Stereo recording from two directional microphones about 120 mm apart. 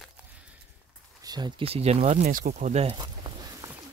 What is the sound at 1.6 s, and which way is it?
Speech, 60° right (ahead or behind).